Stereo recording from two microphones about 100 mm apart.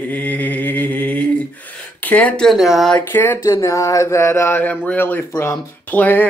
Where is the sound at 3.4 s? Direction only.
30° left (ahead or behind).